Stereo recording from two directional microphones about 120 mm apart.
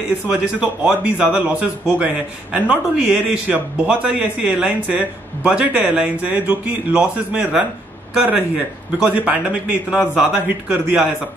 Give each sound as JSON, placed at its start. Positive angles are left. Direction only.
{"t": 0.3, "sound": "a man's voice", "side_deg": -10}